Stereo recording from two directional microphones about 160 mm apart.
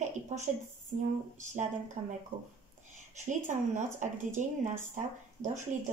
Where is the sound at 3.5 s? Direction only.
50° right (ahead or behind).